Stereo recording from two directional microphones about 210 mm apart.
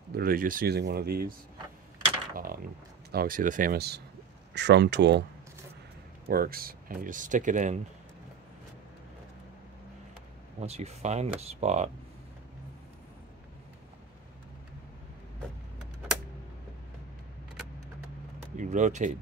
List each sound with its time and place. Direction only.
0.1 s speech: 45° right (ahead or behind)
2.3 s a sound: 45° right (ahead or behind)
3.1 s speech: 45° right (ahead or behind)
6.2 s speech: 45° right (ahead or behind)
10.6 s speech: 30° right (ahead or behind)
18.6 s speech: 35° right (ahead or behind)